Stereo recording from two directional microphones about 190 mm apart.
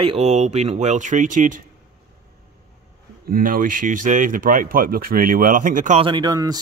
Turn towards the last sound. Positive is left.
turn(degrees=-20)  # may be behind; listen again after turning